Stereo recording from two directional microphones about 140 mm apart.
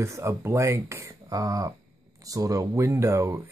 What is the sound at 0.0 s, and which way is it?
Speech, 20° right (ahead or behind).